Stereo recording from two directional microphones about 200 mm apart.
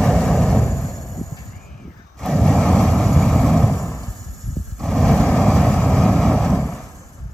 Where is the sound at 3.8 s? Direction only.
15° left (ahead or behind).